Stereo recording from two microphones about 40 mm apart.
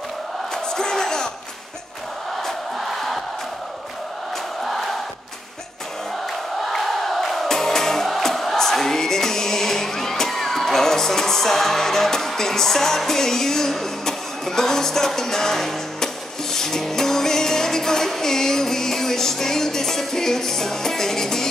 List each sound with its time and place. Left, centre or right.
0.7 s crowd: centre
2.3 s crowd: centre
4.6 s crowd: centre
6.6 s music: centre